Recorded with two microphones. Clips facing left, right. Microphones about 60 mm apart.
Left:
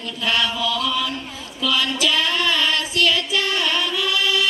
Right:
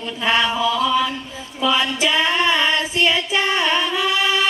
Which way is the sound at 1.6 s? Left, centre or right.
Right.